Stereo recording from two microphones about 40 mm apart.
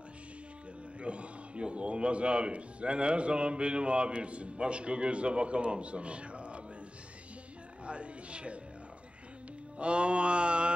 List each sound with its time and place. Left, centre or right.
1.0 s speech: right
7.8 s a sound: right
9.8 s speech: right